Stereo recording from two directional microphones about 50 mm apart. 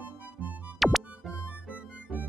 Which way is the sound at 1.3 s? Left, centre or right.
Right.